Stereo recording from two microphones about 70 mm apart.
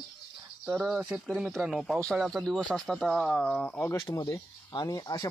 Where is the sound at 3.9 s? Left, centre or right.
Left.